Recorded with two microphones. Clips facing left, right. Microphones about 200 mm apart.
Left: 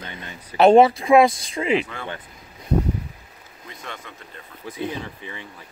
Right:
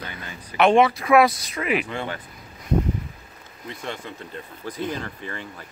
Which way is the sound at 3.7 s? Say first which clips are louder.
Right 5 dB; 30° right (ahead or behind).